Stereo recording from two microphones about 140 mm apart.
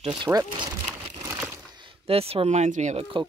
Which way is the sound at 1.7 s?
40° right (ahead or behind).